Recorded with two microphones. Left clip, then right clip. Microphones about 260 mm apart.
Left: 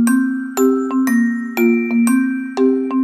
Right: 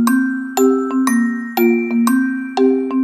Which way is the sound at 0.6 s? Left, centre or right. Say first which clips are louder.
Right 1 dB; centre.